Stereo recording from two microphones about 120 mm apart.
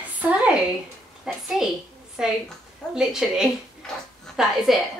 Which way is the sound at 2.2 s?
5° right (ahead or behind).